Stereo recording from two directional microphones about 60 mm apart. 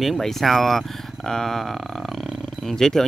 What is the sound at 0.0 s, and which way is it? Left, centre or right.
Speech, centre.